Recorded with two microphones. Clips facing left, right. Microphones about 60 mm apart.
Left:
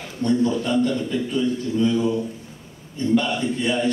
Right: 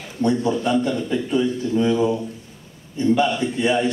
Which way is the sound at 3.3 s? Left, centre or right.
Right.